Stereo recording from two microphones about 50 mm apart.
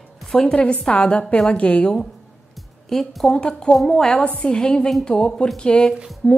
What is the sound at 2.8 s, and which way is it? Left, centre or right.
Speech, centre.